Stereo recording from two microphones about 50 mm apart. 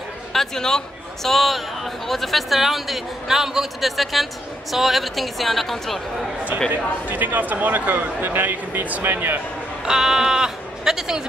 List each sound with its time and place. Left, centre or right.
0.3 s a man's voice: centre
6.7 s a man's voice: right
9.8 s speech: centre